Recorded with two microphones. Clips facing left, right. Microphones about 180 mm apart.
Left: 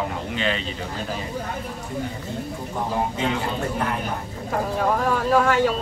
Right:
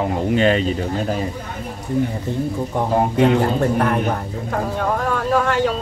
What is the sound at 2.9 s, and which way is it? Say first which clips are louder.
Speech: right 10 dB; 60° right (ahead or behind).